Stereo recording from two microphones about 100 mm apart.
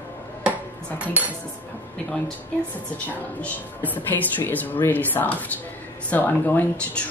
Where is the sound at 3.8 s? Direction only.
20° left (ahead or behind).